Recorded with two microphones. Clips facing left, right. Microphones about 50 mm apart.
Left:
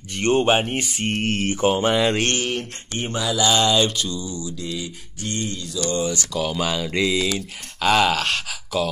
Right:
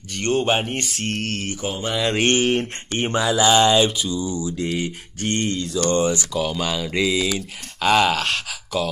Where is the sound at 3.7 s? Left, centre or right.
Centre.